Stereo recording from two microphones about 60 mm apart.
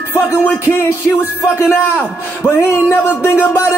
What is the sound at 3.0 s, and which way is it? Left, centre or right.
Music, left.